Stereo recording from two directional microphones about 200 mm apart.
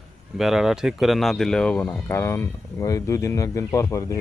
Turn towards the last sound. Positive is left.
turn(degrees=15)  # may be behind; listen again after turning